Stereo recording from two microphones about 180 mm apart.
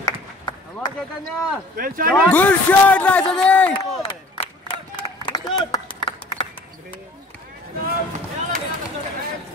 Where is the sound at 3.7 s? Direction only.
30° left (ahead or behind).